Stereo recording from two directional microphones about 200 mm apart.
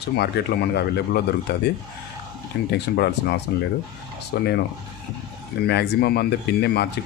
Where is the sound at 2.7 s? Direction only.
55° left (ahead or behind).